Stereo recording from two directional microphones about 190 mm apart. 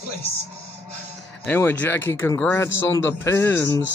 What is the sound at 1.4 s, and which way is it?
Speech, 10° left (ahead or behind).